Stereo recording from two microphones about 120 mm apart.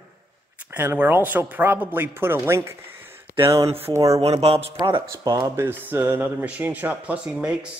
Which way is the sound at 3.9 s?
25° right (ahead or behind).